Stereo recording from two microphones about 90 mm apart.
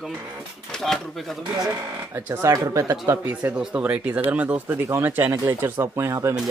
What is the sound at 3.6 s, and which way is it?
Speech, 15° right (ahead or behind).